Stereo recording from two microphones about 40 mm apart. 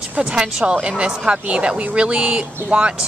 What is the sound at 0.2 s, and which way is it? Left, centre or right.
A woman's voice, right.